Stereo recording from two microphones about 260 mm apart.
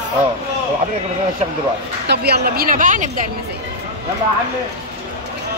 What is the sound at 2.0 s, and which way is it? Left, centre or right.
A woman's voice, right.